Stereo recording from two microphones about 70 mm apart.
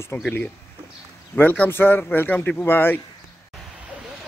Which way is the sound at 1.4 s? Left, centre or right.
Left.